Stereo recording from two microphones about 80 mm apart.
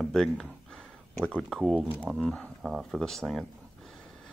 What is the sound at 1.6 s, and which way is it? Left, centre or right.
Speech, centre.